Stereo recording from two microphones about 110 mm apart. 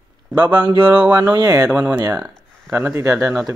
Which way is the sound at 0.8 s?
15° right (ahead or behind).